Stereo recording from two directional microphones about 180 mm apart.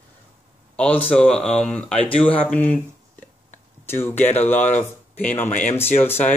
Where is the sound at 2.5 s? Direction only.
10° left (ahead or behind).